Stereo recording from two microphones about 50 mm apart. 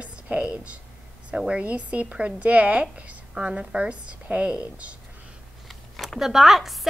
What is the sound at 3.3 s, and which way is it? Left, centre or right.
A woman's voice, centre.